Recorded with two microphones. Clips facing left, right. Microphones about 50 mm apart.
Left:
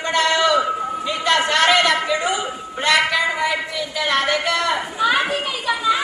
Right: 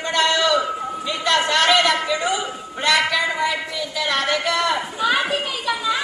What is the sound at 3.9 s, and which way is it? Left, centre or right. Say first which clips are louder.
Speech: left 2 dB; left.